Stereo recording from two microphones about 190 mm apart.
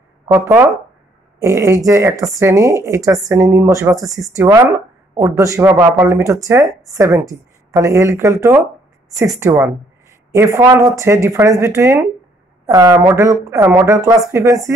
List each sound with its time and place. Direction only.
0.5 s speech: 5° right (ahead or behind)
1.4 s speech: 15° right (ahead or behind)